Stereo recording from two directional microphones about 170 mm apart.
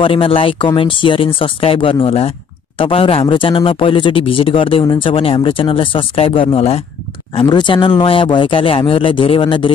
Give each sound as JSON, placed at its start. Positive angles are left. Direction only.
{"t": 0.0, "sound": "speech", "side_deg": 30}